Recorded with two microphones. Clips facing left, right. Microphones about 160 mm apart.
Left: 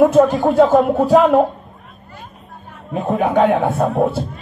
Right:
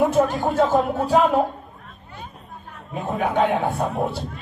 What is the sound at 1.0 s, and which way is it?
Speech, 40° left (ahead or behind).